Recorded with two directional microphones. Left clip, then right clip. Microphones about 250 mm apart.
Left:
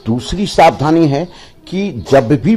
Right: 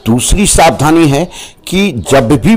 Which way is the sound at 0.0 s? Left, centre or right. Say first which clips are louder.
Right 7 dB; centre.